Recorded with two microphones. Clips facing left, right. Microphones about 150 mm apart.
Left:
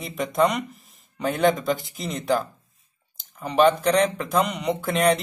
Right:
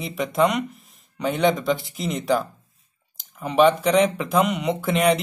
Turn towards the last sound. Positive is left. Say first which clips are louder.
# right 1 dB
turn(degrees=0)  # may be behind; listen again after turning